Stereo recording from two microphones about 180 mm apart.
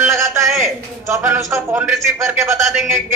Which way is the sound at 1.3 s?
10° right (ahead or behind).